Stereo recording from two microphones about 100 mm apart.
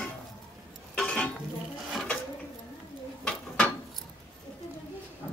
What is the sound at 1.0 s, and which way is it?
Dishes, 5° left (ahead or behind).